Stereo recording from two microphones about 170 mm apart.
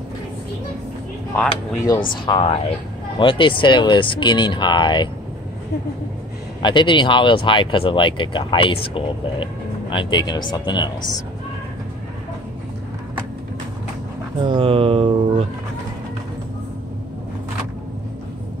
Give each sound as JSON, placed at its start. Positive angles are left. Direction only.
{"t": 1.3, "sound": "speech", "side_deg": 5}
{"t": 2.2, "sound": "speech", "side_deg": 30}
{"t": 6.6, "sound": "speech", "side_deg": 25}
{"t": 14.4, "sound": "speech", "side_deg": -30}